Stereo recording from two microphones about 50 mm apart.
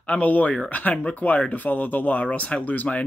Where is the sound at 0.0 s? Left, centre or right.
Left.